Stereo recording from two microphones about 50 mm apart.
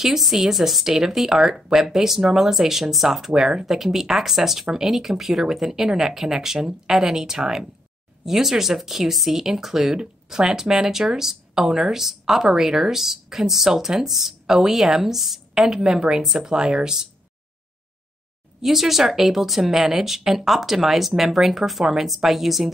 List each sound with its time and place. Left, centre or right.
0.0 s speech: centre
18.6 s speech: centre